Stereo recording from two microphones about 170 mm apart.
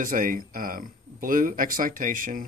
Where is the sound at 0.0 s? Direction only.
55° right (ahead or behind).